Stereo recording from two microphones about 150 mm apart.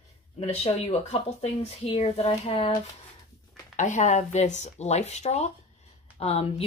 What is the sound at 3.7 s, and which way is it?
A woman's voice, 55° left (ahead or behind).